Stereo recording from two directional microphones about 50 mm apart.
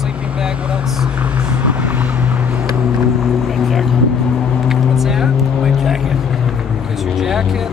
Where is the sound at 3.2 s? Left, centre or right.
Centre.